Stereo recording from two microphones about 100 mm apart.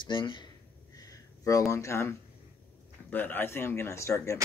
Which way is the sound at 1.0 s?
35° left (ahead or behind).